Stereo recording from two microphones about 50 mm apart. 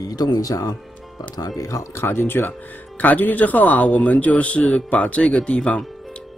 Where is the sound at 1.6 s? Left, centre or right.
Left.